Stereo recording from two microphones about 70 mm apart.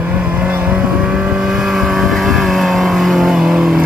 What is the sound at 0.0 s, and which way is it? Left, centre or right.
Vehicle, right.